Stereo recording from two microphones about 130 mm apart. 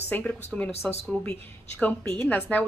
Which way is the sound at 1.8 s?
10° left (ahead or behind).